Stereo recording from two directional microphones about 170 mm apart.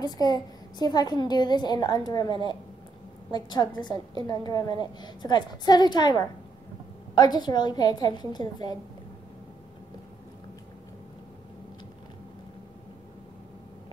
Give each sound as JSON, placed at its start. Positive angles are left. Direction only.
{"t": 0.0, "sound": "a child's voice", "side_deg": 20}